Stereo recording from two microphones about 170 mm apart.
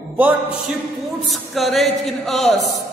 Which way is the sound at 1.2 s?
Centre (ahead or behind).